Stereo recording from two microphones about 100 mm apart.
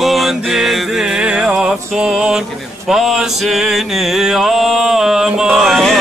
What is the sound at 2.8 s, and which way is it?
Music, 5° right (ahead or behind).